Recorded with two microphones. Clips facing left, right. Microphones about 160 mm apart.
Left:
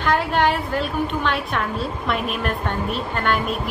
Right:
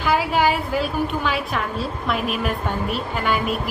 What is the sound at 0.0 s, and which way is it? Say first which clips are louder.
A woman's voice: even; 5° right (ahead or behind).